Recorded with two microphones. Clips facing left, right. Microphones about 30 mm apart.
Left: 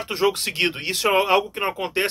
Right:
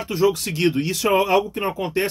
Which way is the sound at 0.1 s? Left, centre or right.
Left.